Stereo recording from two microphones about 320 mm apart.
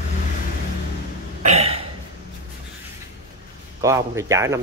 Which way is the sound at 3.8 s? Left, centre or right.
Centre.